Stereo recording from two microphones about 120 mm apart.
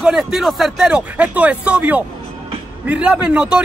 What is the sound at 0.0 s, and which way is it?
A man's voice, 5° right (ahead or behind).